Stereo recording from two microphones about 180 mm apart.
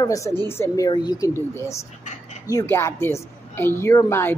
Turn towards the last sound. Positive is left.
turn(degrees=15)  # may be behind; listen again after turning